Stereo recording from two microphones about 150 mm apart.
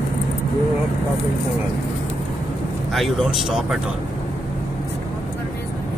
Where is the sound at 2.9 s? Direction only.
Centre (ahead or behind).